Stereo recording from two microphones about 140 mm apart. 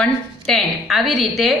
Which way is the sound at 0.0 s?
Centre (ahead or behind).